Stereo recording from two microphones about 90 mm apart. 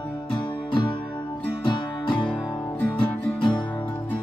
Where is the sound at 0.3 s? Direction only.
60° left (ahead or behind).